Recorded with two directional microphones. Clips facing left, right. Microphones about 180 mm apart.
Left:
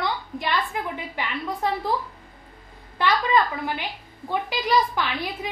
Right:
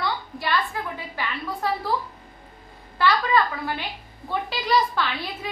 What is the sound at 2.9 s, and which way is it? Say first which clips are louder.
A woman's voice: even; 20° left (ahead or behind).